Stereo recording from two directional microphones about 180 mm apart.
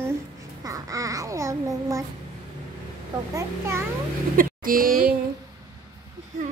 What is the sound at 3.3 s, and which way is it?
Speech, 15° right (ahead or behind).